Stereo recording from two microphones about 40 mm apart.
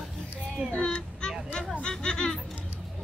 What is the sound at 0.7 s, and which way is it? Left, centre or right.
Speech, left.